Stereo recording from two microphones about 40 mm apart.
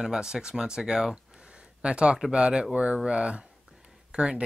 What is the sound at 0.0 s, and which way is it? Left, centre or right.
Speech, centre.